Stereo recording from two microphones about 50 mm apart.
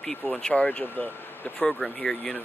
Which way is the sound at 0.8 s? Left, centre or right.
Left.